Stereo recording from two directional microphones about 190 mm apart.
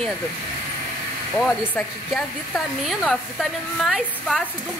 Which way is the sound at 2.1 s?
Centre (ahead or behind).